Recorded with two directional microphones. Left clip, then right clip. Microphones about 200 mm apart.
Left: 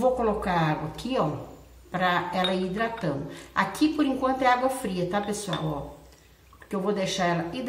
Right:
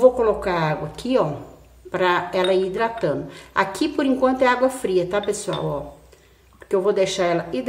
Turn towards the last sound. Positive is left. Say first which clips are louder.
# right 6 dB
turn(degrees=-55)  # may be behind; listen again after turning